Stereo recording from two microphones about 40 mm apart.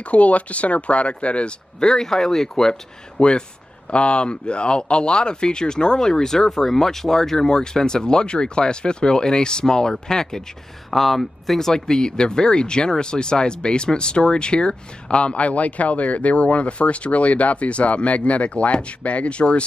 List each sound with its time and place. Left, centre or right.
0.0 s speech: left
1.8 s speech: centre
2.7 s speech: left
10.9 s speech: centre; by 19.6 s left